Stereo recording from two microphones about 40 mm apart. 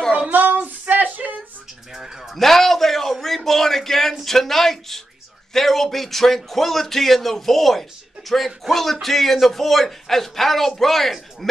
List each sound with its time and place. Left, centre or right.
0.3 s child singing: right
1.1 s a sound: right
2.3 s a man's voice: centre